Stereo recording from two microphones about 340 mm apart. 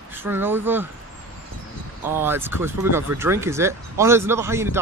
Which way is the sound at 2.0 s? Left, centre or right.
Centre.